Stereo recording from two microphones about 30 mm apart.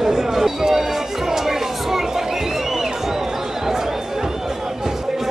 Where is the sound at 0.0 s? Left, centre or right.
Centre.